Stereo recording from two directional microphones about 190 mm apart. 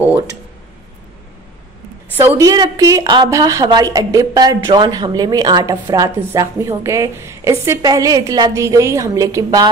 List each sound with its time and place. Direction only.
2.1 s a woman's voice: 15° right (ahead or behind)